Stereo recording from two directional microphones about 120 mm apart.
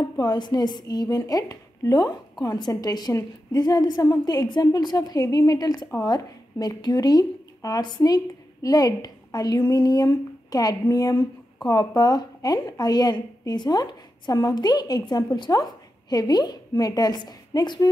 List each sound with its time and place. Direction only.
0.0 s a woman's voice: 35° left (ahead or behind)